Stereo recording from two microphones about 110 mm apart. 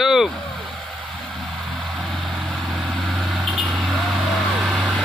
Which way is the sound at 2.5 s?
10° right (ahead or behind).